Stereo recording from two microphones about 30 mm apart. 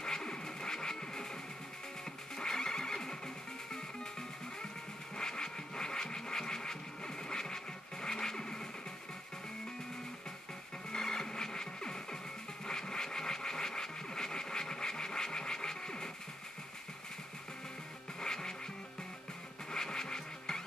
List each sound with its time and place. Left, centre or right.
0.0 s music: left
2.3 s neigh: left
5.1 s a sound: left
7.2 s scratch: left
10.9 s music: left
12.6 s a sound: left
18.2 s music: left
19.7 s music: left